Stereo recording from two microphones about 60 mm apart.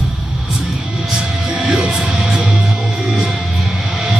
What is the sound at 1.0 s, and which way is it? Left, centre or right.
Music, centre.